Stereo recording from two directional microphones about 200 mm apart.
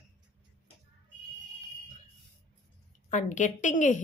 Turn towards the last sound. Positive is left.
turn(degrees=40)  # may be behind; listen again after turning